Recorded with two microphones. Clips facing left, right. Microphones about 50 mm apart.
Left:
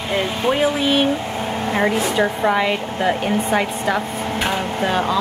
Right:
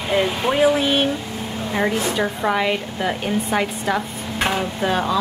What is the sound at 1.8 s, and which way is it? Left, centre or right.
A woman's voice, centre.